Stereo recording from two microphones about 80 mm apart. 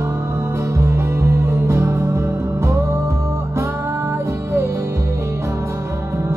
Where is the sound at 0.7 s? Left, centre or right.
Right.